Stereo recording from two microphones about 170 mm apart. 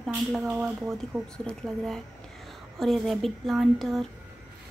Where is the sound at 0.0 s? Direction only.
5° right (ahead or behind).